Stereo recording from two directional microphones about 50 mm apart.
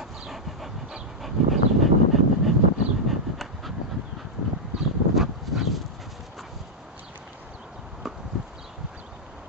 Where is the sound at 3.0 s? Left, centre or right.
Centre.